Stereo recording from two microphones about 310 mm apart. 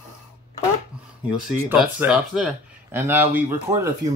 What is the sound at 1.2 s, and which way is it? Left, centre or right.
Speech, centre.